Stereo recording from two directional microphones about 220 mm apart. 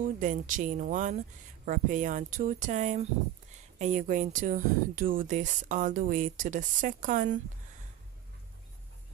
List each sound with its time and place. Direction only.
0.0 s speech: 35° right (ahead or behind)